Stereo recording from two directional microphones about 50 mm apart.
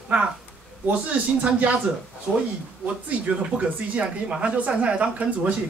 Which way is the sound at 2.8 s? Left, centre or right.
Right.